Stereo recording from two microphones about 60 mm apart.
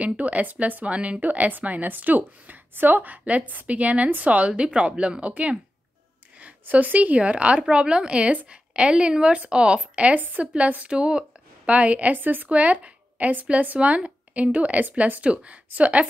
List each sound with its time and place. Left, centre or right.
0.0 s a woman's voice: right
6.6 s a woman's voice: right